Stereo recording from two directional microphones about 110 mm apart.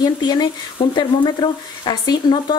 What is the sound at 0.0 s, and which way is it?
Speech, 35° left (ahead or behind).